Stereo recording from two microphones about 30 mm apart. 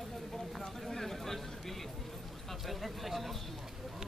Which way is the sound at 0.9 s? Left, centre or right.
Centre.